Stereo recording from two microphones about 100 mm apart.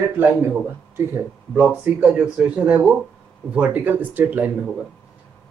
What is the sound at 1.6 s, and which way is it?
Speech, 10° right (ahead or behind).